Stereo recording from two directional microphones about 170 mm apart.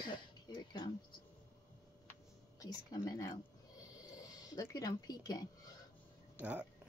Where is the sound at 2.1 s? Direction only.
20° left (ahead or behind).